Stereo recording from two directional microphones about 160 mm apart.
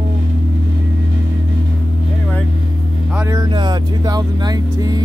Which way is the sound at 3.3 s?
25° right (ahead or behind).